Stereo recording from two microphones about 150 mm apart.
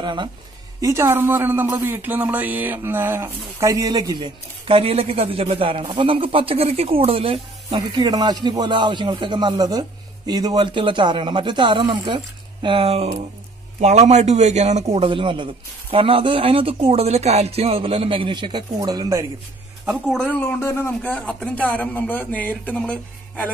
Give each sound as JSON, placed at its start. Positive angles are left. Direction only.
{"t": 0.0, "sound": "speech", "side_deg": -30}
{"t": 0.7, "sound": "speech", "side_deg": -20}
{"t": 19.9, "sound": "a man's voice", "side_deg": 5}